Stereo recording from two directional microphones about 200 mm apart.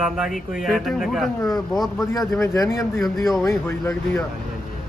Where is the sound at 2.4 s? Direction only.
15° left (ahead or behind).